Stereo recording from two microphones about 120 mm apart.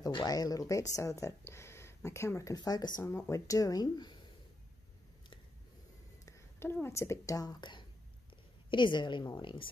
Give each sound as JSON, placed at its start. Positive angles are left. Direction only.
{"t": 0.0, "sound": "speech", "side_deg": 35}
{"t": 3.0, "sound": "speech", "side_deg": 20}
{"t": 6.2, "sound": "a woman's voice", "side_deg": 20}